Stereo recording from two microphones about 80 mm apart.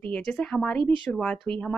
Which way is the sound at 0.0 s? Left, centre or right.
Centre.